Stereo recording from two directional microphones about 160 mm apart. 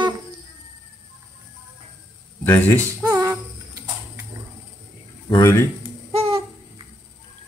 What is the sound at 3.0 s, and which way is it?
Music, 20° right (ahead or behind).